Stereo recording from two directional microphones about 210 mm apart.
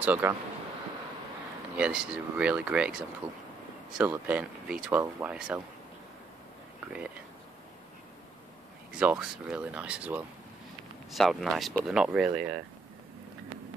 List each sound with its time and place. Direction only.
0.0 s speech: 10° right (ahead or behind)
1.8 s speech: 5° right (ahead or behind)
3.2 s speech: 25° right (ahead or behind)
4.0 s speech: 5° right (ahead or behind)
8.9 s speech: 5° right (ahead or behind)